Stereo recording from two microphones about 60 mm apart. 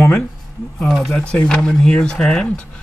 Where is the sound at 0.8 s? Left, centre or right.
Centre.